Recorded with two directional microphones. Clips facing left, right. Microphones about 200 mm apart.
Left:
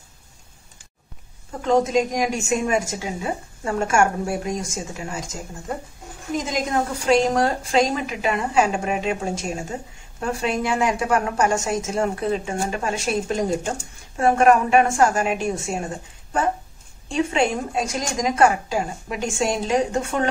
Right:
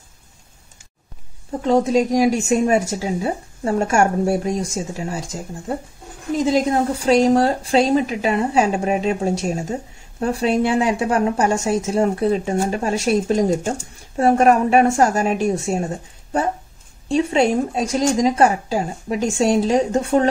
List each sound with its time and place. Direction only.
1.6 s a woman's voice: 35° right (ahead or behind)
6.4 s a woman's voice: 35° right (ahead or behind)
17.1 s a woman's voice: 35° right (ahead or behind)